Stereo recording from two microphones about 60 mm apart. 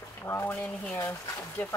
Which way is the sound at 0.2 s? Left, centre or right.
Left.